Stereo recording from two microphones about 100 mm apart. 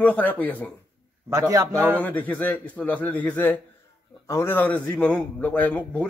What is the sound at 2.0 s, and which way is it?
A man's voice, 15° left (ahead or behind).